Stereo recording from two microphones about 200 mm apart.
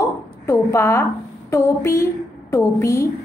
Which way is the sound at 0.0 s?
15° left (ahead or behind).